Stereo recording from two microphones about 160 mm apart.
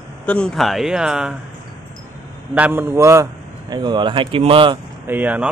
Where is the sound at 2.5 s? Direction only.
10° right (ahead or behind); by 4.8 s 35° right (ahead or behind).